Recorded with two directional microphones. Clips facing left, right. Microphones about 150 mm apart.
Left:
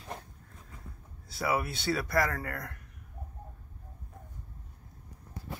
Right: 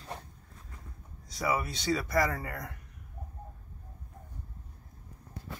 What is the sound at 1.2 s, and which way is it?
Speech, 5° left (ahead or behind).